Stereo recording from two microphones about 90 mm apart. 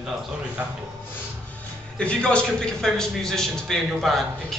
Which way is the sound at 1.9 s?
10° left (ahead or behind).